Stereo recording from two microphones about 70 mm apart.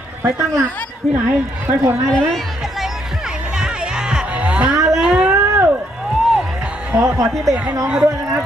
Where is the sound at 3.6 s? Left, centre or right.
Centre.